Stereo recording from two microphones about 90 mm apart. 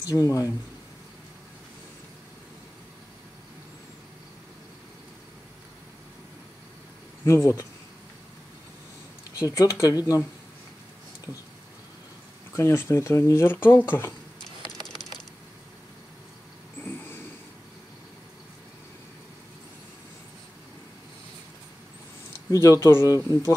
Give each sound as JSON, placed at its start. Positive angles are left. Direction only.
{"t": 0.0, "sound": "speech", "side_deg": 40}
{"t": 7.2, "sound": "speech", "side_deg": 30}
{"t": 9.4, "sound": "speech", "side_deg": 35}
{"t": 12.5, "sound": "speech", "side_deg": 30}
{"t": 14.6, "sound": "a sound", "side_deg": -55}
{"t": 16.8, "sound": "a sound", "side_deg": 25}
{"t": 22.5, "sound": "speech", "side_deg": 35}